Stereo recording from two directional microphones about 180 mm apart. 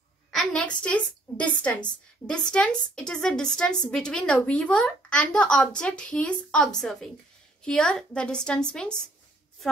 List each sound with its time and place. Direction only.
0.3 s a woman's voice: centre (ahead or behind)